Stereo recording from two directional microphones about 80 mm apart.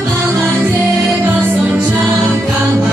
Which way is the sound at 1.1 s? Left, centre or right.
Centre.